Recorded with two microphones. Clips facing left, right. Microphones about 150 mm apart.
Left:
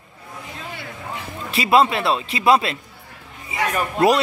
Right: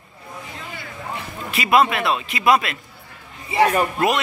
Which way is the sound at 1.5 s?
30° left (ahead or behind).